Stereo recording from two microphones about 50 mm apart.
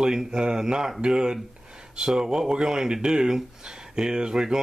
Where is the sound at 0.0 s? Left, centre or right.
Centre.